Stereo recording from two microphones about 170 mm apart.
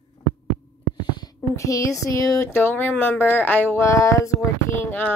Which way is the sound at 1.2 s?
20° left (ahead or behind).